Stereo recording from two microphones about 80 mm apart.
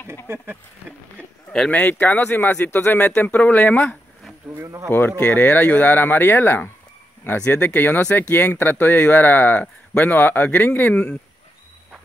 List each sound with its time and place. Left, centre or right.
0.3 s speech: right
1.7 s speech: centre
4.6 s speech: right
4.9 s speech: left
7.3 s speech: centre